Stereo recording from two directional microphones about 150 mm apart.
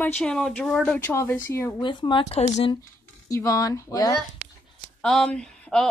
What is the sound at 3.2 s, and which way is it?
Speech, 20° left (ahead or behind).